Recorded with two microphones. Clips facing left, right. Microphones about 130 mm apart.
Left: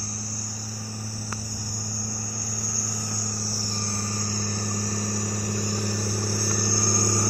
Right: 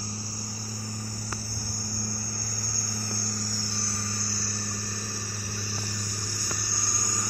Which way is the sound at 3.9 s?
40° left (ahead or behind).